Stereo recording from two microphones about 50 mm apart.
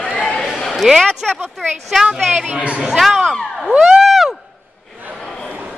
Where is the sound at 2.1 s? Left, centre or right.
Centre.